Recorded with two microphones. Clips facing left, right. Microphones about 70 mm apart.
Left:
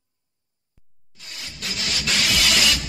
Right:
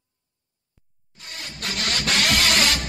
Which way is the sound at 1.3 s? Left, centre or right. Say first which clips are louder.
Right 2 dB; right.